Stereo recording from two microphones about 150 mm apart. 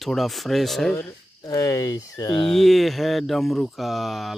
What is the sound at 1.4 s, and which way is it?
Speech, 20° left (ahead or behind).